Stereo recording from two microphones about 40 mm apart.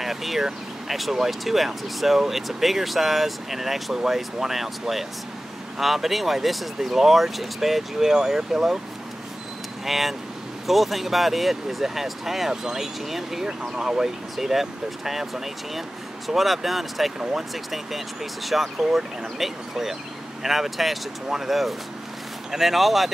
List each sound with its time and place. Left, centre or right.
0.0 s vehicle: centre
0.8 s speech: centre
9.8 s speech: centre
13.5 s speech: centre
17.2 s speech: centre
17.6 s speech: centre